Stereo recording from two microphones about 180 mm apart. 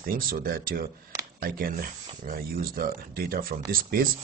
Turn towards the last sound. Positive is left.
turn(degrees=-55)  # may be behind; listen again after turning